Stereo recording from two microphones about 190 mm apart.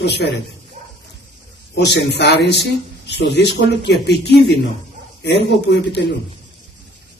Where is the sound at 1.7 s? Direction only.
65° left (ahead or behind).